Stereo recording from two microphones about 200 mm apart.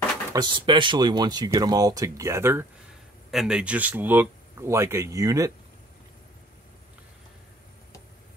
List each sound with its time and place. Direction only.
0.3 s speech: 20° right (ahead or behind)
3.3 s speech: 5° right (ahead or behind)